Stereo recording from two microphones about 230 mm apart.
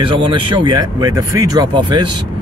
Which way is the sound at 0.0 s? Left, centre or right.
Right.